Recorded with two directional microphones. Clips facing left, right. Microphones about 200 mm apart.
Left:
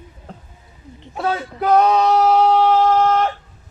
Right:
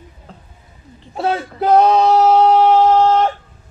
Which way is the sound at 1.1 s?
30° right (ahead or behind).